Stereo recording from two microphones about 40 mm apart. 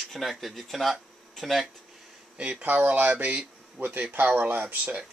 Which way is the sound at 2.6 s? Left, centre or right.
Right.